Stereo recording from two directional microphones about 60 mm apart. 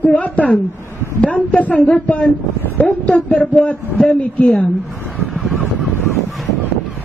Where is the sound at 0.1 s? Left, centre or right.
Centre.